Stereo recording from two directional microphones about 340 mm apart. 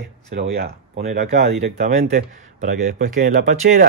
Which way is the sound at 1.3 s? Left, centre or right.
Centre.